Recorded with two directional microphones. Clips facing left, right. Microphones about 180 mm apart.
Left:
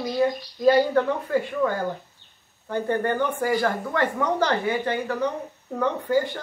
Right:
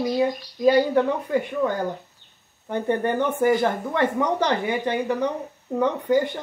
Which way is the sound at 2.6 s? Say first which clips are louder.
Right 1 dB; 20° right (ahead or behind).